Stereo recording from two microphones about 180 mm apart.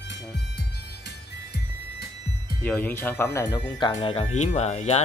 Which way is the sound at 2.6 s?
10° left (ahead or behind).